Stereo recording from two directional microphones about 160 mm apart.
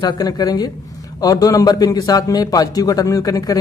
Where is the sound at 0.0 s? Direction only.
25° left (ahead or behind).